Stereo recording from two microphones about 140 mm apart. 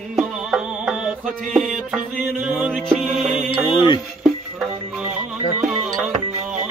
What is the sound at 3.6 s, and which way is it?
Music, 30° left (ahead or behind).